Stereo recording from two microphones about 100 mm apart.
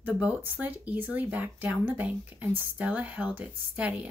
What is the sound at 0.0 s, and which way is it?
Speech, 15° right (ahead or behind).